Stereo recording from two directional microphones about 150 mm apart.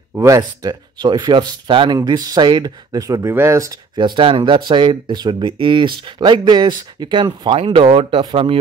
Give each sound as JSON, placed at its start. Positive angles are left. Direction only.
{"t": 0.1, "sound": "speech", "side_deg": -20}